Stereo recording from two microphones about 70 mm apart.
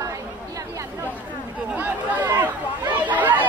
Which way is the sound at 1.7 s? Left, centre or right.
Right.